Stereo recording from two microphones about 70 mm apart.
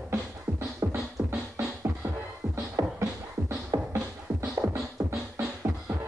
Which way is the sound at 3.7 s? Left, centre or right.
Right.